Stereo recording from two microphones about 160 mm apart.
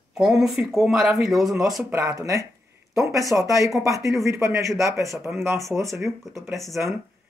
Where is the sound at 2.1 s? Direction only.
20° right (ahead or behind).